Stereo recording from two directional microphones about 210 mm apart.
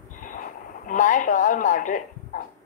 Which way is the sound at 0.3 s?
40° left (ahead or behind).